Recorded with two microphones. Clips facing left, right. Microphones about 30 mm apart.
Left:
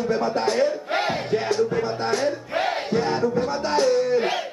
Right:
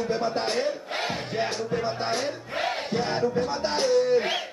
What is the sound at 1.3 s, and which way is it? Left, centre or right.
Music, centre.